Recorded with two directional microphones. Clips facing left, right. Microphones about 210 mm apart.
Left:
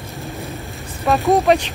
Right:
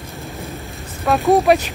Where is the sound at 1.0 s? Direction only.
Centre (ahead or behind).